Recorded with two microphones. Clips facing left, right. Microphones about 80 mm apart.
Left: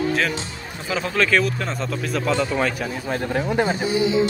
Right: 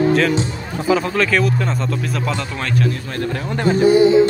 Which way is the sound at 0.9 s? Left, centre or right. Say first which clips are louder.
Right 4 dB; centre.